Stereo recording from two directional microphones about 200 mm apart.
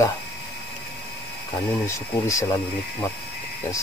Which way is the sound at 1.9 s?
15° left (ahead or behind).